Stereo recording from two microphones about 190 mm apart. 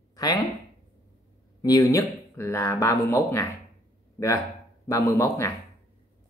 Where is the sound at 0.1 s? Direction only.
20° left (ahead or behind).